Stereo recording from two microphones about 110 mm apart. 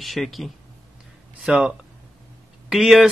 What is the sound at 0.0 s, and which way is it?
Speech, centre (ahead or behind).